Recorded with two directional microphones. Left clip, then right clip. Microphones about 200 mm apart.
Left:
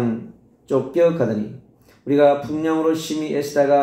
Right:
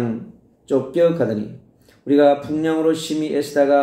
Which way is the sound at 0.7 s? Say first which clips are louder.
Even; 15° right (ahead or behind).